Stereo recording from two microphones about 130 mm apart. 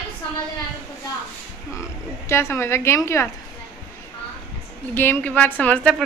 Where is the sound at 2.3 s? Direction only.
20° left (ahead or behind).